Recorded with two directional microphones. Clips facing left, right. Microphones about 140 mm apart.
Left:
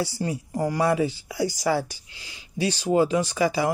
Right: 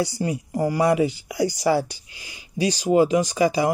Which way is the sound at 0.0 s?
15° right (ahead or behind).